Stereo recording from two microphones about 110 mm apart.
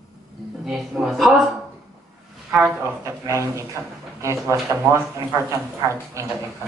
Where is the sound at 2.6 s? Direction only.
25° right (ahead or behind).